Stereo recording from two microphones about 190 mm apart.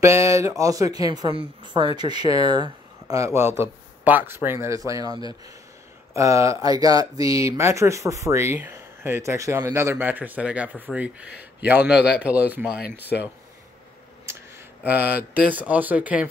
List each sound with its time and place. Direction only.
0.0 s speech: 15° right (ahead or behind)
14.3 s a sound: 15° right (ahead or behind)
14.8 s mantra: 10° right (ahead or behind)
15.5 s speech: 10° right (ahead or behind)